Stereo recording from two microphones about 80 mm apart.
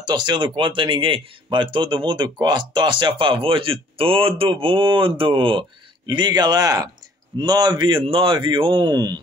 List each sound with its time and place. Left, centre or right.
0.0 s speech: right
7.3 s speech: right